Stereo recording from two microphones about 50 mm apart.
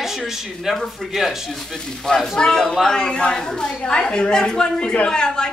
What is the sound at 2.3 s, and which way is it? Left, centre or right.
A woman's voice, centre.